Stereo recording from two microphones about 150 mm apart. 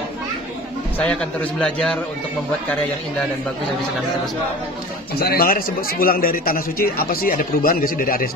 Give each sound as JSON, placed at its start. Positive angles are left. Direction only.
{"t": 0.9, "sound": "a man's voice", "side_deg": 5}
{"t": 5.2, "sound": "a man's voice", "side_deg": 85}